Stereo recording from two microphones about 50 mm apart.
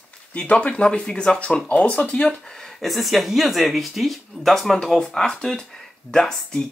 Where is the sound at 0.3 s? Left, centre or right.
Left.